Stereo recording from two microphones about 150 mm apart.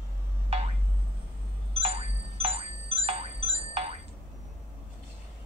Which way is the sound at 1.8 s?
40° right (ahead or behind).